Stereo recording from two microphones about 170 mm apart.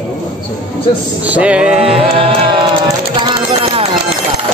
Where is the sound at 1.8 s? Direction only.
35° right (ahead or behind).